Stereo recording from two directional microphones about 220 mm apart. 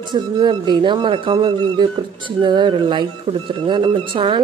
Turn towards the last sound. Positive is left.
turn(degrees=-20)  # may be behind; listen again after turning